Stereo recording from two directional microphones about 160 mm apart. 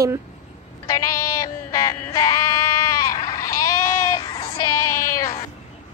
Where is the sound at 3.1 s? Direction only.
20° left (ahead or behind).